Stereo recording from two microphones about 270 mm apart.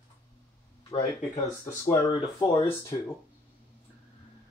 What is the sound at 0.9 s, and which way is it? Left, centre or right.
Speech, centre.